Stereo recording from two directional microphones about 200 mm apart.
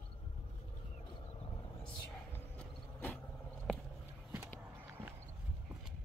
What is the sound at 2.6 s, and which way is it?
Vehicle, 10° left (ahead or behind).